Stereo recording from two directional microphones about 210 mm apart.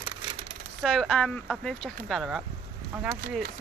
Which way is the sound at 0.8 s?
Centre (ahead or behind).